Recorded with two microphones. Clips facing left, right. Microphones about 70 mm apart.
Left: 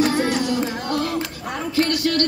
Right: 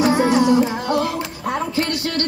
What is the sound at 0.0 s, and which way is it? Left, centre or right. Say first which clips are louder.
Music: right 4 dB; centre.